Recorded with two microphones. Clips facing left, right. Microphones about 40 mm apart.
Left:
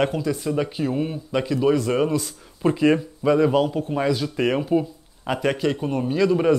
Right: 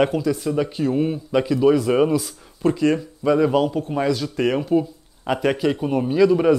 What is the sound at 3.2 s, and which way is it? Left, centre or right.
Speech, centre.